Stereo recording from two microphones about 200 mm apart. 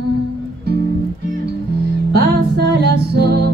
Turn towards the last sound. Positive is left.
turn(degrees=-55)  # may be behind; listen again after turning